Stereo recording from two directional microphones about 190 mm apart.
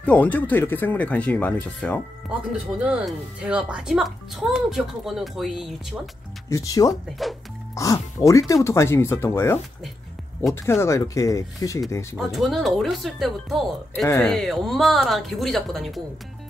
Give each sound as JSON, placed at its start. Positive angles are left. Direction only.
{"t": 0.0, "sound": "speech", "side_deg": 5}
{"t": 2.2, "sound": "speech", "side_deg": -5}
{"t": 6.5, "sound": "speech", "side_deg": 20}
{"t": 7.1, "sound": "speech", "side_deg": 0}
{"t": 7.7, "sound": "speech", "side_deg": 15}
{"t": 12.2, "sound": "speech", "side_deg": 0}